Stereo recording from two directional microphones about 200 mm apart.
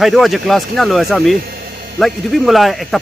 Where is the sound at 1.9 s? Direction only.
Centre (ahead or behind).